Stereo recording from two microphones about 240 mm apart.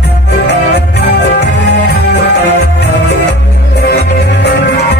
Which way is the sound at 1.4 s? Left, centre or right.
Left.